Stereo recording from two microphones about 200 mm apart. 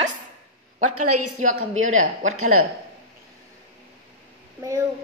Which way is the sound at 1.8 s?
40° right (ahead or behind).